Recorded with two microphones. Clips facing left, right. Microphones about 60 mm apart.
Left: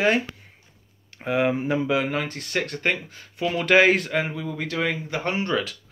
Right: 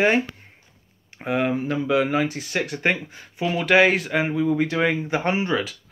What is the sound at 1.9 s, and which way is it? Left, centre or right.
Speech, centre.